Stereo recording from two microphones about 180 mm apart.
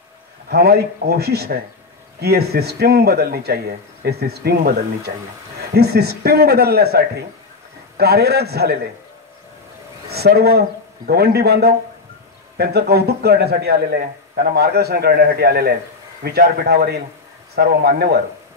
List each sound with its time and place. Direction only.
0.5 s a man's voice: 65° right (ahead or behind)
10.0 s a man's voice: 60° right (ahead or behind)